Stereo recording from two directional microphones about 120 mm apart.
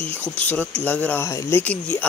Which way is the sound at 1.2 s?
25° left (ahead or behind).